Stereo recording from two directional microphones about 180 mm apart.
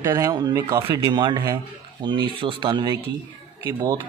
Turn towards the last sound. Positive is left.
turn(degrees=-20)  # may be behind; listen again after turning